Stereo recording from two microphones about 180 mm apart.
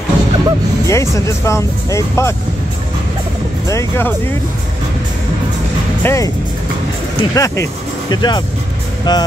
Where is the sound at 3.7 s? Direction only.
15° left (ahead or behind).